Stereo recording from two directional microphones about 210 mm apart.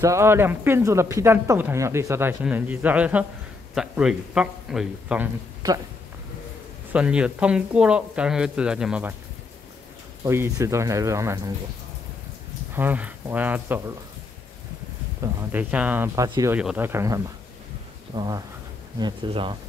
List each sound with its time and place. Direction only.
0.0 s speech: 15° right (ahead or behind)
6.9 s speech: 5° right (ahead or behind)
10.2 s speech: 15° right (ahead or behind)
12.7 s speech: 10° right (ahead or behind)
15.5 s speech: 5° right (ahead or behind); by 19.5 s 25° right (ahead or behind)